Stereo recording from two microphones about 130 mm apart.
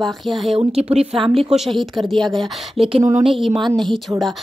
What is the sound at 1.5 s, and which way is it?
Speech, centre (ahead or behind).